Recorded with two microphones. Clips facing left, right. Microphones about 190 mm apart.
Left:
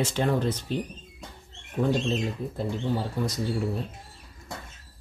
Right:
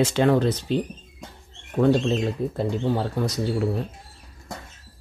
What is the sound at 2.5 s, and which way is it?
Speech, 70° right (ahead or behind).